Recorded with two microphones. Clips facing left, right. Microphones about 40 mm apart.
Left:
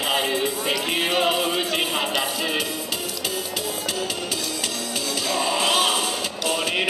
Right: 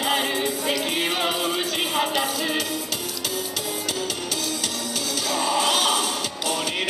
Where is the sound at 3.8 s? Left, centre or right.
Centre.